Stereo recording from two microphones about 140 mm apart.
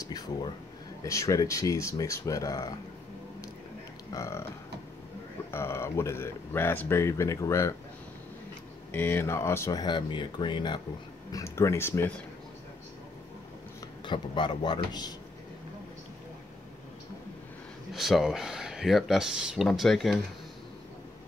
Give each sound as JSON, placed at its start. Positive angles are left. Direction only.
{"t": 0.0, "sound": "a sound", "side_deg": 30}
{"t": 1.0, "sound": "speech", "side_deg": 20}
{"t": 4.1, "sound": "speech", "side_deg": 20}
{"t": 5.5, "sound": "speech", "side_deg": 20}
{"t": 8.9, "sound": "speech", "side_deg": 15}
{"t": 11.3, "sound": "speech", "side_deg": 20}
{"t": 14.0, "sound": "speech", "side_deg": 35}
{"t": 17.9, "sound": "speech", "side_deg": 0}